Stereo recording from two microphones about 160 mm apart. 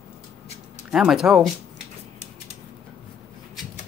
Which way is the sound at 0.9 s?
5° right (ahead or behind).